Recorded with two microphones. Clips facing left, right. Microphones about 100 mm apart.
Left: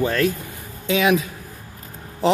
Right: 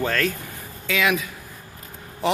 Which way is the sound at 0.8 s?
25° left (ahead or behind).